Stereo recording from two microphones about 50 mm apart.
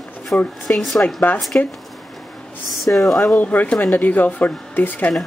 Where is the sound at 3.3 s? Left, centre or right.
Left.